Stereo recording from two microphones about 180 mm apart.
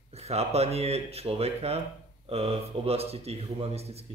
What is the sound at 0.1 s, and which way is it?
A man's voice, 35° right (ahead or behind).